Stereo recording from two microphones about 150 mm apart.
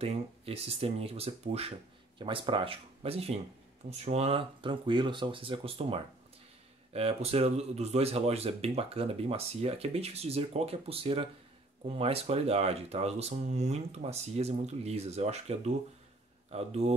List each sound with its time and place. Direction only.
0.0 s speech: 40° right (ahead or behind)